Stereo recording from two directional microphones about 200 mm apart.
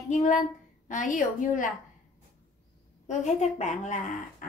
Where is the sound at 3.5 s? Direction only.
35° left (ahead or behind).